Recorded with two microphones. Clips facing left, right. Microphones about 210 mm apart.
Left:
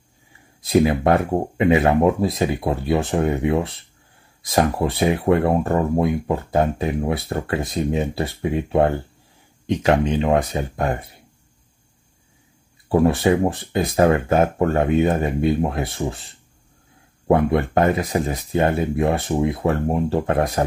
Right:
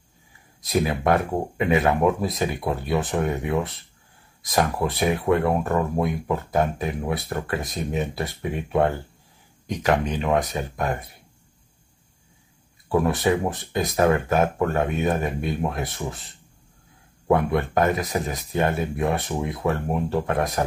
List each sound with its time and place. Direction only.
0.6 s speech: 30° left (ahead or behind)
12.8 s speech: 30° left (ahead or behind)
17.3 s speech: 30° left (ahead or behind)